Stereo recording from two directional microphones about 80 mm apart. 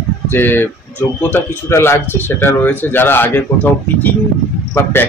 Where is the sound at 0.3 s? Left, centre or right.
Left.